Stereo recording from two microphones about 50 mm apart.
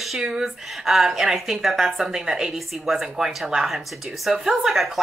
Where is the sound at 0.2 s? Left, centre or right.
Centre.